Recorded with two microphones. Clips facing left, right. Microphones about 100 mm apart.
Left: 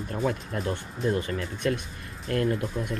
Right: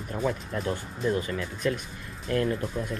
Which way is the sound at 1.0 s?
35° left (ahead or behind).